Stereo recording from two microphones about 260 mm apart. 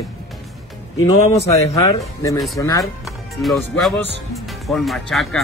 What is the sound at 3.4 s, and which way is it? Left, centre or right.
Speech, centre.